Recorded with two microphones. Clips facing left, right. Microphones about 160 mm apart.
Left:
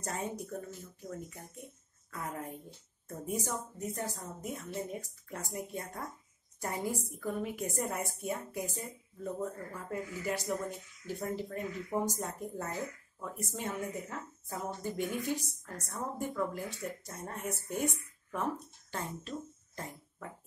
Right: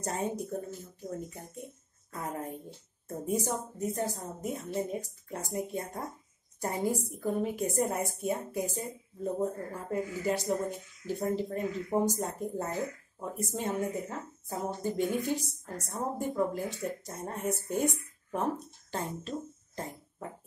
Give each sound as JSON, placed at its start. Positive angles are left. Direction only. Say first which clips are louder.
{"t": 0.0, "sound": "a woman's voice", "louder": "right 5 dB", "side_deg": -30}